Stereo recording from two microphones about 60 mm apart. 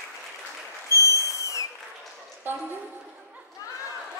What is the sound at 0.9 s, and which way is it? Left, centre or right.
Applause, left.